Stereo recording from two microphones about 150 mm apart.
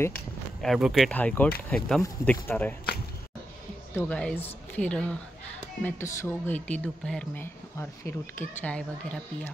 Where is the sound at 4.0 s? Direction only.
10° left (ahead or behind).